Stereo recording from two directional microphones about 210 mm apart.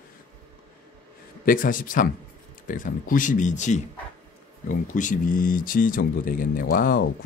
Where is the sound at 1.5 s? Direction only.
40° left (ahead or behind).